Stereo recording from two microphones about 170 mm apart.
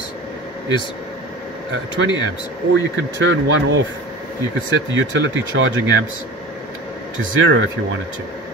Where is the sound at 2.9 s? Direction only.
90° right.